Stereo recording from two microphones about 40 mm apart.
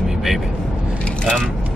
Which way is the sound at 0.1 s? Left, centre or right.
Centre.